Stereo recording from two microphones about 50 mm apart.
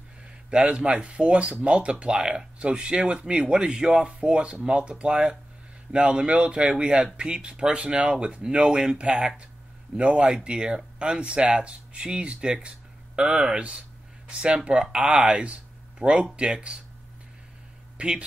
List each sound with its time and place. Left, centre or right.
0.5 s speech: centre
17.9 s speech: centre